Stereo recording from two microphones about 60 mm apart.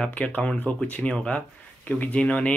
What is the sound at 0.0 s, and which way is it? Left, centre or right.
Speech, left.